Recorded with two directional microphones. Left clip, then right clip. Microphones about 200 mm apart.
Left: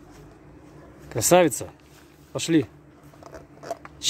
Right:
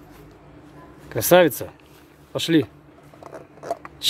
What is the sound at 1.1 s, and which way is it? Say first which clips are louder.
Speech: right 3 dB; centre (ahead or behind).